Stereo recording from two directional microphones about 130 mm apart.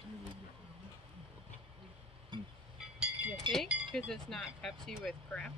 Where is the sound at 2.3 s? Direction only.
40° right (ahead or behind).